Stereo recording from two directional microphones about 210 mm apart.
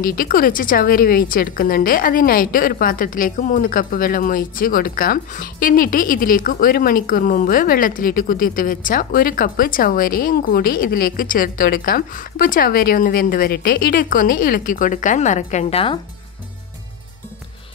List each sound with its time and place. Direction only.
0.0 s a woman's voice: 45° left (ahead or behind); by 16.0 s 25° left (ahead or behind)